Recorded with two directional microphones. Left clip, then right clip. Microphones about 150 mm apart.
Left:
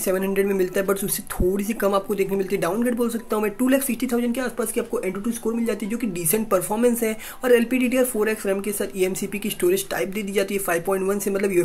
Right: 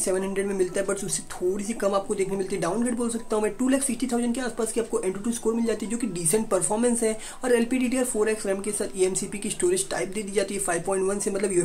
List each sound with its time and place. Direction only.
0.0 s speech: 20° left (ahead or behind)